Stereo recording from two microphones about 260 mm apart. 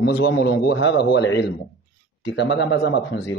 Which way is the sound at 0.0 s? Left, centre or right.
Left.